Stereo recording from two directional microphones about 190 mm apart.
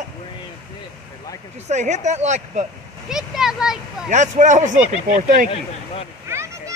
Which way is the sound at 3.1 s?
5° right (ahead or behind).